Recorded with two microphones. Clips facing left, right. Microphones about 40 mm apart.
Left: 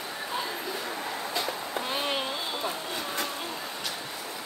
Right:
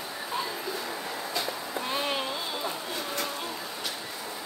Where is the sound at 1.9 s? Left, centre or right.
Centre.